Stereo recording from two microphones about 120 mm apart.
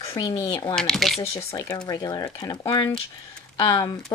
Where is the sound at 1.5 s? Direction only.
30° left (ahead or behind).